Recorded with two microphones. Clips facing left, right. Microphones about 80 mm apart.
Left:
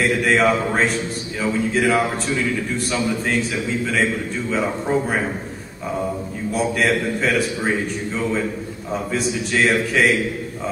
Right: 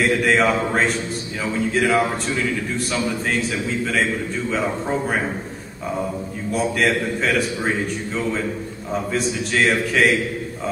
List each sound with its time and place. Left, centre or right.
0.0 s a man's voice: centre
4.5 s a man's voice: centre
6.5 s a man's voice: centre
9.1 s a man's voice: centre